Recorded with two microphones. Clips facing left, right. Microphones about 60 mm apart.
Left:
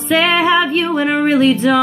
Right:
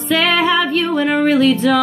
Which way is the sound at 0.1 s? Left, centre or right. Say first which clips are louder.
Left 2 dB; left.